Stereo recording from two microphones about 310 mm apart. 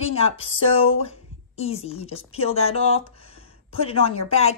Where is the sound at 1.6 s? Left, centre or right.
Centre.